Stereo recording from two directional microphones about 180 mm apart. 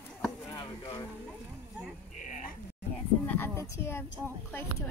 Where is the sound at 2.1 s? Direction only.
45° left (ahead or behind).